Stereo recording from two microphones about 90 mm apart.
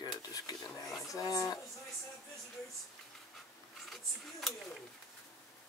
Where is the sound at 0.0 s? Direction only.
45° left (ahead or behind).